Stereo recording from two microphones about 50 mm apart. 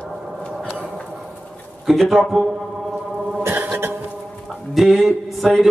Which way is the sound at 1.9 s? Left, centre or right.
Centre.